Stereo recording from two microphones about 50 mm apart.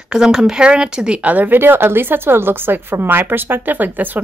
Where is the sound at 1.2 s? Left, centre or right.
Right.